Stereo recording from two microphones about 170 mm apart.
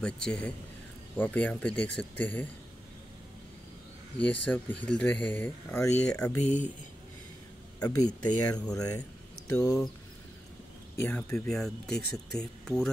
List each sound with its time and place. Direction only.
0.0 s speech: 5° left (ahead or behind)
4.2 s speech: 10° left (ahead or behind)
6.4 s speech: 45° left (ahead or behind)
7.8 s speech: 20° left (ahead or behind)
11.0 s speech: 10° left (ahead or behind)